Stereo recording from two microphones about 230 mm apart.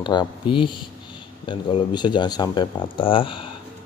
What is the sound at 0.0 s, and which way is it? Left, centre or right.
Speech, centre.